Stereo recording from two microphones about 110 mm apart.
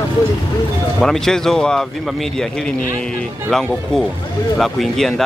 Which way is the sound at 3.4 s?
5° left (ahead or behind).